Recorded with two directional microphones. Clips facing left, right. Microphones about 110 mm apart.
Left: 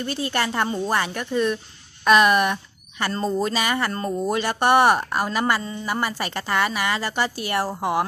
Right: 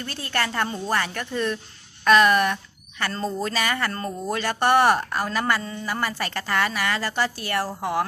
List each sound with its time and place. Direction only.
0.0 s speech: 15° left (ahead or behind)